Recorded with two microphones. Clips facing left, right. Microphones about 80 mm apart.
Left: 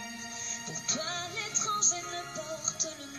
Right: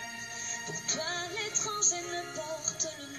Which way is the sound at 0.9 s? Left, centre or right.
Right.